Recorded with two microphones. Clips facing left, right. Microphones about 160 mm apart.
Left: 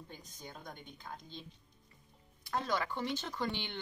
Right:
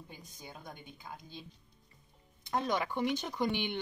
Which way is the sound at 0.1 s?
10° right (ahead or behind).